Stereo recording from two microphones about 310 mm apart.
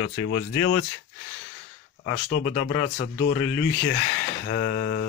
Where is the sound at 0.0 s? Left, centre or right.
Left.